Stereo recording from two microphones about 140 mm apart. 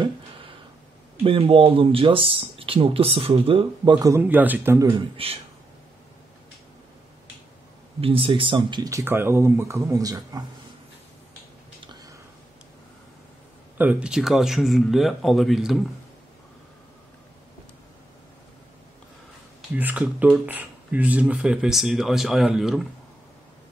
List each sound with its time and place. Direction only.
1.2 s speech: 40° right (ahead or behind)
4.1 s speech: 10° right (ahead or behind)
4.9 s a man's voice: 45° right (ahead or behind)
8.0 s speech: 40° right (ahead or behind)
13.7 s speech: 10° right (ahead or behind)
19.7 s speech: 10° right (ahead or behind)